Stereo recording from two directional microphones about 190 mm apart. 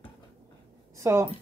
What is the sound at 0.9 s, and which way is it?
Speech, 15° right (ahead or behind).